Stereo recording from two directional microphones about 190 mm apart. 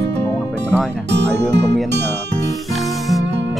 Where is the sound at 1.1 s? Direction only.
65° right (ahead or behind).